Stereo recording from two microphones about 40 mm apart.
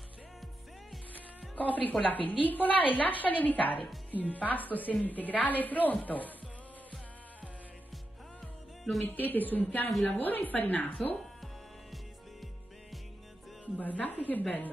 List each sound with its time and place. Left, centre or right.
1.5 s a woman's voice: left
9.0 s a woman's voice: left
11.1 s music: centre
13.7 s a woman's voice: left